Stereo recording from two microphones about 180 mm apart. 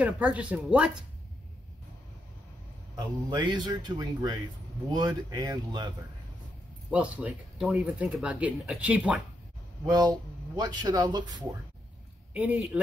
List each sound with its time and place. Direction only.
0.0 s speech: 5° right (ahead or behind)
3.0 s speech: 25° right (ahead or behind)
6.9 s speech: 5° right (ahead or behind)
9.8 s speech: 25° right (ahead or behind)
12.4 s speech: 10° right (ahead or behind)